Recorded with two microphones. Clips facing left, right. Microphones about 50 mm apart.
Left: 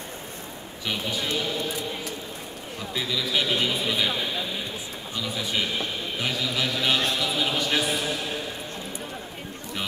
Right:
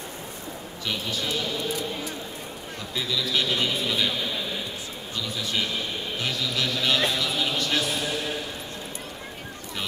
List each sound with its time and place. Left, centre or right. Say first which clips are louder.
0.8 s speech: left 1 dB; centre
2.9 s speech: even; centre
5.3 s speech: left 1 dB; centre